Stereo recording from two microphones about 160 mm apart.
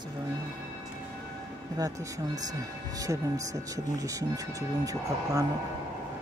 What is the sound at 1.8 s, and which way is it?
Speech, 25° right (ahead or behind).